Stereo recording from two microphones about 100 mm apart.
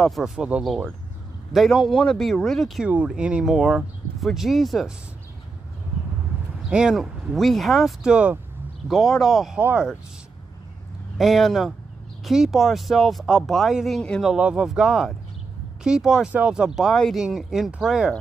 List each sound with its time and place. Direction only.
0.2 s speech: 10° right (ahead or behind)
1.5 s speech: centre (ahead or behind)
2.8 s speech: 10° right (ahead or behind)
6.7 s speech: 10° right (ahead or behind)
8.8 s speech: centre (ahead or behind)
9.6 s speech: 15° right (ahead or behind)
11.1 s speech: centre (ahead or behind)
14.3 s speech: 5° right (ahead or behind)